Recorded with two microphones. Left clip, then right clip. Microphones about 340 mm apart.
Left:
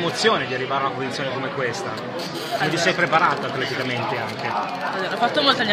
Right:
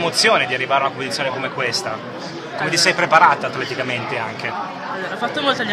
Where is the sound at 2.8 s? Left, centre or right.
Right.